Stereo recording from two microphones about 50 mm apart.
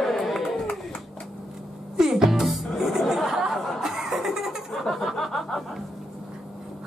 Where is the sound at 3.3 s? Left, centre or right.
Centre.